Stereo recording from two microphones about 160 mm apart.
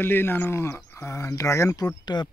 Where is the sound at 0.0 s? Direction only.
15° left (ahead or behind).